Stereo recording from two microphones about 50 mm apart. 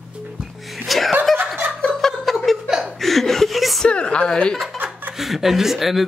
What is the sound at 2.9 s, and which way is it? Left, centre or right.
Chuckle, centre.